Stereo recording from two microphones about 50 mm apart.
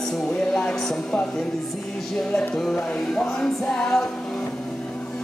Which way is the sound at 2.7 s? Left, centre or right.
Centre.